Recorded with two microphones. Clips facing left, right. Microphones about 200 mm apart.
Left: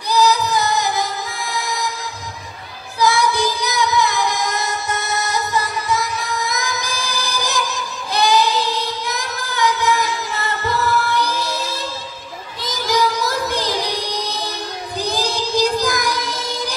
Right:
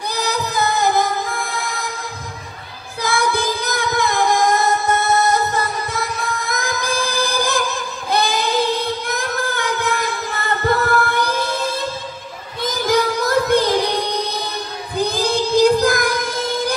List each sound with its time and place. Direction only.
0.1 s music: 55° right (ahead or behind)
3.0 s child singing: 55° right (ahead or behind)
12.6 s music: 55° right (ahead or behind)
15.0 s child singing: 55° right (ahead or behind)